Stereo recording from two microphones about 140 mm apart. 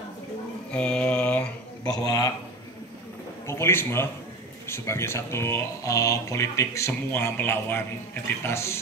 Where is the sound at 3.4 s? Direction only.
20° left (ahead or behind).